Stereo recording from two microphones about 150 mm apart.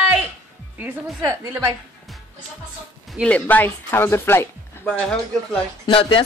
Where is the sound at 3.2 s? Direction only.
10° left (ahead or behind).